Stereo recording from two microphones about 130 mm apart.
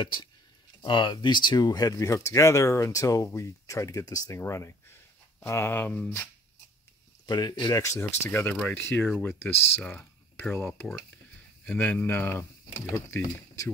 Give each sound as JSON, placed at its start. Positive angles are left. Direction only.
{"t": 0.0, "sound": "speech", "side_deg": 35}
{"t": 7.2, "sound": "speech", "side_deg": 30}